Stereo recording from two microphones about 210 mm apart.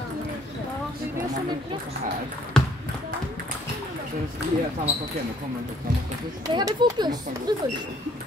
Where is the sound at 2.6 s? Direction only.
5° left (ahead or behind).